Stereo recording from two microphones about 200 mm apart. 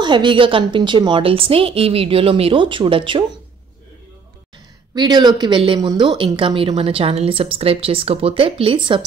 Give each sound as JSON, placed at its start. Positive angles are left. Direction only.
{"t": 0.0, "sound": "speech", "side_deg": -25}
{"t": 4.9, "sound": "speech", "side_deg": -20}